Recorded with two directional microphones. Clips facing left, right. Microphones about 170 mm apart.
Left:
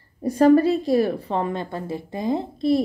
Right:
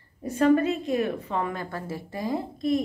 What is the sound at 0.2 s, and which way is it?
A woman's voice, 35° left (ahead or behind).